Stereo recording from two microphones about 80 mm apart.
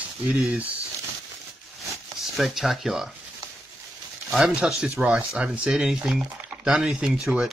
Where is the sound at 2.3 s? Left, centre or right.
Centre.